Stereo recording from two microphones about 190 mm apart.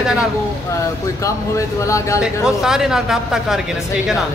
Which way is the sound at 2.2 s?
5° right (ahead or behind).